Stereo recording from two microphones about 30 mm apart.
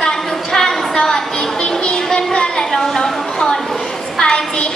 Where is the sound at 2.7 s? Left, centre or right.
Centre.